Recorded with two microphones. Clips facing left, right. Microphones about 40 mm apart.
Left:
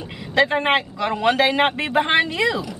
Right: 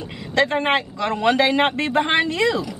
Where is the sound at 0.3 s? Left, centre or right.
Centre.